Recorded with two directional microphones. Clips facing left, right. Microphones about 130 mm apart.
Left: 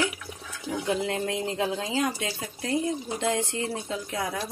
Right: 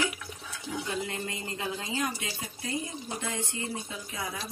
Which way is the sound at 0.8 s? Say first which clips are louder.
Left 9 dB; 75° left (ahead or behind).